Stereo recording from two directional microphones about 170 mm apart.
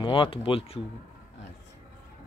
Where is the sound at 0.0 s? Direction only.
30° left (ahead or behind).